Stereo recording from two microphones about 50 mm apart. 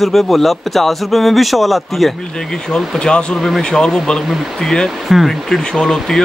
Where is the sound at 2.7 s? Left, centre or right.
Centre.